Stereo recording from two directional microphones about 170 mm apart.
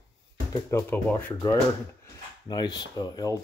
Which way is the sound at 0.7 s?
10° left (ahead or behind).